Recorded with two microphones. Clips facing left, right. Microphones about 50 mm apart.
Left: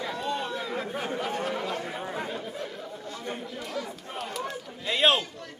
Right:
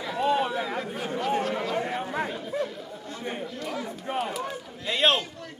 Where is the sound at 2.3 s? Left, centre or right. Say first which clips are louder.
Right 4 dB; centre.